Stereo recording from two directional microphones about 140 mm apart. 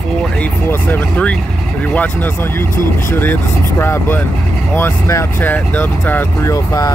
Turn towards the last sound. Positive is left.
turn(degrees=25)  # may be behind; listen again after turning